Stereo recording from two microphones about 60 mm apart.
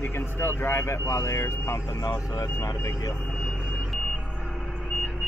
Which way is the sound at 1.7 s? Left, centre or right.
Left.